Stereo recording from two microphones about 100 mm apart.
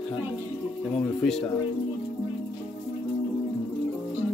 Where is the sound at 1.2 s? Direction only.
5° left (ahead or behind).